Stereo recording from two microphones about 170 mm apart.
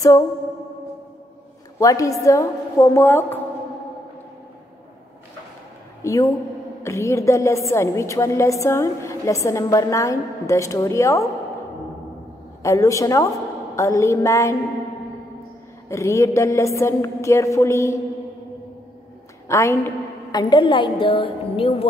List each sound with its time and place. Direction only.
1.8 s a woman's voice: 20° left (ahead or behind)
6.0 s a woman's voice: 20° left (ahead or behind)
12.6 s a woman's voice: 20° left (ahead or behind)
15.9 s a woman's voice: 15° left (ahead or behind)
19.4 s a woman's voice: 15° left (ahead or behind); by 21.8 s 35° left (ahead or behind)